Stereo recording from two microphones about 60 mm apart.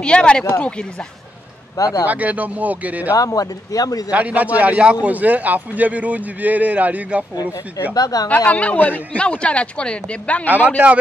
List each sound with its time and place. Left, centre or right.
0.0 s a woman's voice: centre
1.8 s speech: left
2.0 s speech: right
3.2 s speech: left
4.1 s speech: right
7.9 s speech: left
8.5 s a woman's voice: left